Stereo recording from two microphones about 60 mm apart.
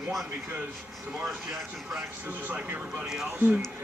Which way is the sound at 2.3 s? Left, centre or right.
Right.